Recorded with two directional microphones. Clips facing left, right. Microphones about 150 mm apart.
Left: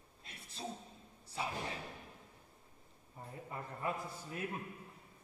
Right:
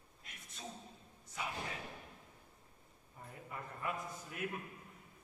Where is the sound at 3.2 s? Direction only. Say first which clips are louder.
Left 2 dB; 30° left (ahead or behind).